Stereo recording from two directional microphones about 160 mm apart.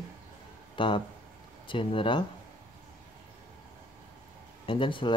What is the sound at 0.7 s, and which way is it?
Speech, 30° left (ahead or behind).